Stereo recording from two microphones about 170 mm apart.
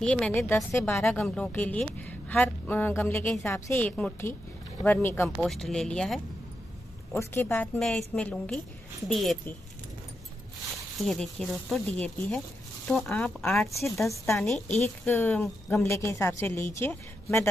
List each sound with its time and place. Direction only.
0.0 s a woman's voice: 5° left (ahead or behind)
5.4 s speech: 5° left (ahead or behind)
7.2 s a woman's voice: 15° left (ahead or behind)
11.0 s a woman's voice: 5° left (ahead or behind)